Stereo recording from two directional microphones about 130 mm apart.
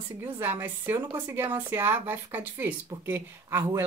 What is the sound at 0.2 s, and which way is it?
A woman's voice, 15° right (ahead or behind).